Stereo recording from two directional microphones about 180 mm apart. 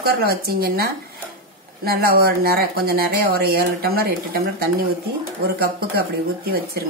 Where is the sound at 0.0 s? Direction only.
60° right (ahead or behind).